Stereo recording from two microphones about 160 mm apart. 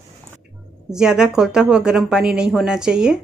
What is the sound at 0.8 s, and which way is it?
Speech, 5° right (ahead or behind).